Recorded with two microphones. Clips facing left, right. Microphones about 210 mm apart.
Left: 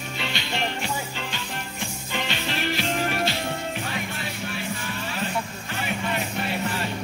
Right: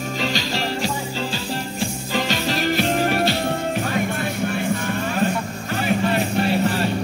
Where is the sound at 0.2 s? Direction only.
40° right (ahead or behind).